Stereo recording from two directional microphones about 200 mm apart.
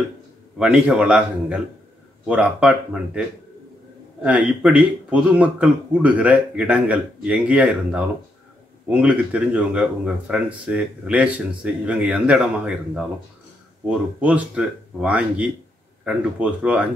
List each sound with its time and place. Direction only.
0.6 s speech: 5° right (ahead or behind)